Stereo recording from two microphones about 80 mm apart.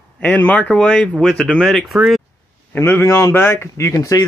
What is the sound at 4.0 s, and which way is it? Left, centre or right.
Speech, left.